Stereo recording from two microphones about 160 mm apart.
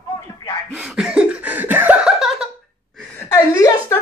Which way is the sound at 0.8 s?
5° right (ahead or behind).